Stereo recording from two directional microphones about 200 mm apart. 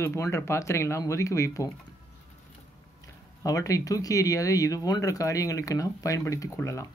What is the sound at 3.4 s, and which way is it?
Speech, 15° left (ahead or behind).